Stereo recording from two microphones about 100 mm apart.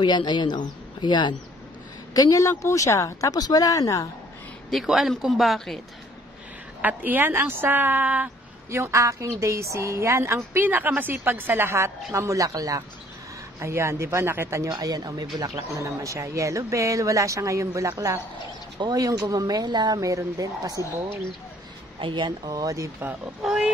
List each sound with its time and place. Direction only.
0.0 s a woman's voice: 50° left (ahead or behind)
2.1 s speech: 35° left (ahead or behind)
4.6 s speech: centre (ahead or behind)
6.8 s a woman's voice: 15° right (ahead or behind)
8.6 s a woman's voice: 25° right (ahead or behind)
22.0 s speech: 55° right (ahead or behind)
22.5 s speech: 35° right (ahead or behind)
23.4 s speech: 5° right (ahead or behind)